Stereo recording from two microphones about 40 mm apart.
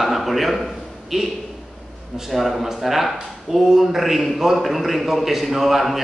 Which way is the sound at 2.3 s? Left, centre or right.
Centre.